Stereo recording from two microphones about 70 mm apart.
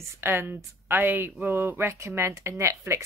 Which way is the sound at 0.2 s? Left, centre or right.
Right.